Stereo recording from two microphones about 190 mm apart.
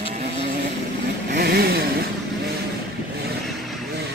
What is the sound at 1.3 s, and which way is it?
Vehicle, 55° right (ahead or behind).